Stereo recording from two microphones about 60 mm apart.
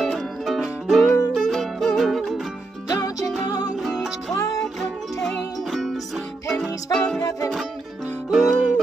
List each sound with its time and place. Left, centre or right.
0.0 s music: centre
2.9 s music: left
3.8 s music: centre
4.3 s music: left
4.7 s music: centre
8.3 s music: centre